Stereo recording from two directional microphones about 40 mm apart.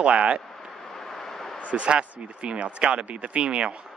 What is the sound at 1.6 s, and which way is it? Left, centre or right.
Speech, right.